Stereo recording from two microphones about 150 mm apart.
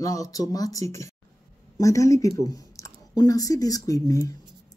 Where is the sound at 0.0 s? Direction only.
20° left (ahead or behind).